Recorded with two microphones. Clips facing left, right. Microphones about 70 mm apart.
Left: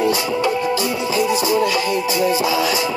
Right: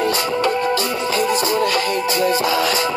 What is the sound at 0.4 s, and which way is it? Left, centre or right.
Music, right.